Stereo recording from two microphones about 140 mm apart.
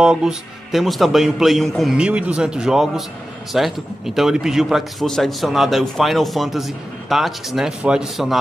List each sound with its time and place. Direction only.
0.0 s a man's voice: 5° right (ahead or behind)